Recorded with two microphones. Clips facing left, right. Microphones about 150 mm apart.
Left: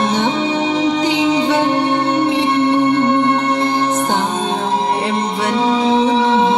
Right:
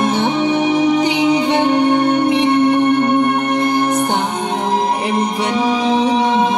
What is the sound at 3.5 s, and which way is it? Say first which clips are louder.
Music: right 1 dB; 15° right (ahead or behind).